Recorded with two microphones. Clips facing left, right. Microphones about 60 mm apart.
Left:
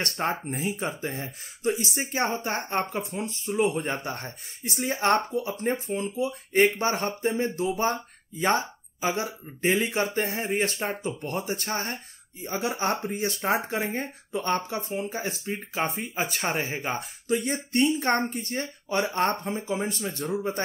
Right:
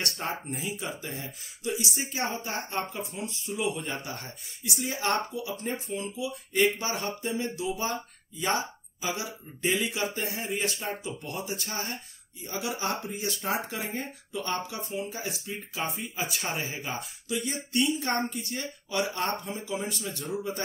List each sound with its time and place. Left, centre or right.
0.0 s speech: left